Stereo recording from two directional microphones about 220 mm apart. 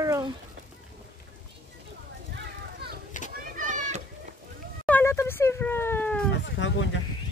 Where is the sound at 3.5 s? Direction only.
35° right (ahead or behind).